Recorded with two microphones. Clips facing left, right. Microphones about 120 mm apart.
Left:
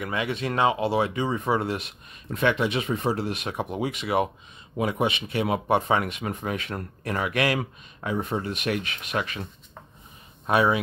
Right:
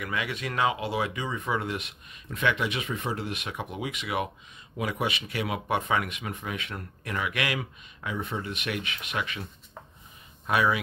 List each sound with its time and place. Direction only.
0.0 s speech: 25° left (ahead or behind)
10.4 s speech: 30° left (ahead or behind)